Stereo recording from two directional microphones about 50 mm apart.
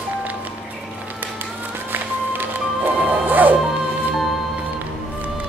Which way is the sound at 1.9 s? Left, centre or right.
Right.